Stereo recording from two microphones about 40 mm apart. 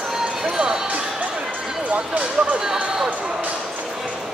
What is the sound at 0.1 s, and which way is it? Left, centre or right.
Basketball bounce, centre.